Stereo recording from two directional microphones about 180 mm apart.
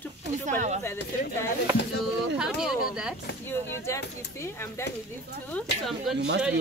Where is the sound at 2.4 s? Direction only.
5° right (ahead or behind).